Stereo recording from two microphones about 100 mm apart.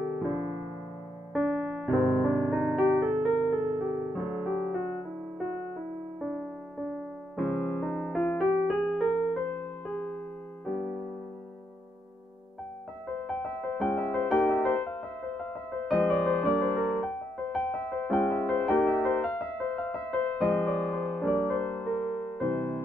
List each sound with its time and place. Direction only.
1.3 s piano: 5° right (ahead or behind)
6.2 s keyboard: centre (ahead or behind)
7.4 s piano: 10° left (ahead or behind)
8.4 s keyboard: centre (ahead or behind)
9.4 s keyboard: 10° left (ahead or behind)
13.1 s music: 10° left (ahead or behind)
15.9 s music: 5° left (ahead or behind)